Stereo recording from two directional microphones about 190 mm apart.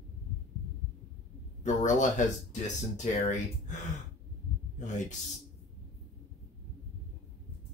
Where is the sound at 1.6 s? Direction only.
40° left (ahead or behind).